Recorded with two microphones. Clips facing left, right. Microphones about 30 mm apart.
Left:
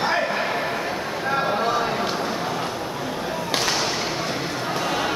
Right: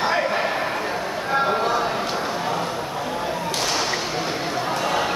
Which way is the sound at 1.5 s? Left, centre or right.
Centre.